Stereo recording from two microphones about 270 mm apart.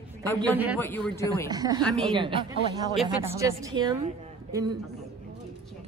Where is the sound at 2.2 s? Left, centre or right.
Centre.